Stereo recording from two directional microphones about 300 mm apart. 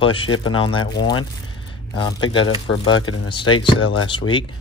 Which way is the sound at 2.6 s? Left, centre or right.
Left.